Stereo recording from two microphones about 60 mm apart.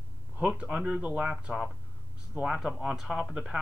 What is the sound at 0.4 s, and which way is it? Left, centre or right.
Speech, centre.